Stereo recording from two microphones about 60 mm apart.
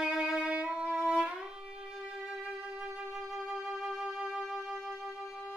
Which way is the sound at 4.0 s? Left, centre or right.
Centre.